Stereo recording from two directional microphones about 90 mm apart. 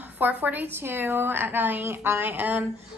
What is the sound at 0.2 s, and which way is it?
A woman's voice, 20° right (ahead or behind).